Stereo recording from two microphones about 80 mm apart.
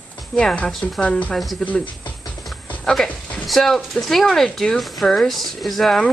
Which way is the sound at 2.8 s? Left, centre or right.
Centre.